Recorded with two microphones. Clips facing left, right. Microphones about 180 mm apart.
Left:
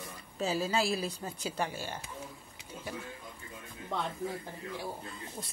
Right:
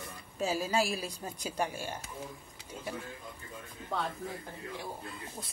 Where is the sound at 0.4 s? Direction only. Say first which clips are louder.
Even; 10° right (ahead or behind).